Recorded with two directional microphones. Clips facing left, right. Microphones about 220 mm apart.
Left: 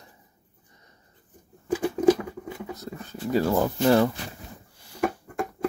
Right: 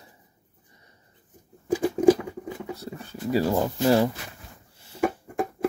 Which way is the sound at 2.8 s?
5° right (ahead or behind).